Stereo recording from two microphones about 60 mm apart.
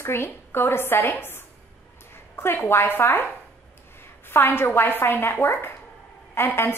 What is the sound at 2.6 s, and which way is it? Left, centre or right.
Speech, left.